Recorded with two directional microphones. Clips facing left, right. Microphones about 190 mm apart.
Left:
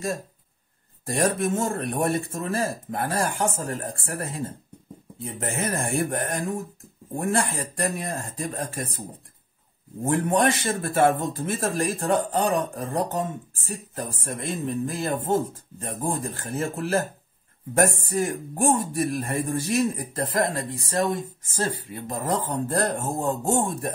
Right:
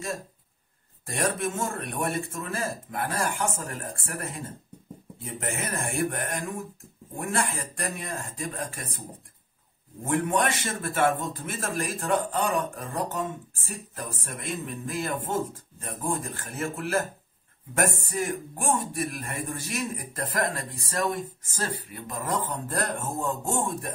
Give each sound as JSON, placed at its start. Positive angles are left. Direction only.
{"t": 1.0, "sound": "a man's voice", "side_deg": 35}
{"t": 10.0, "sound": "a man's voice", "side_deg": 30}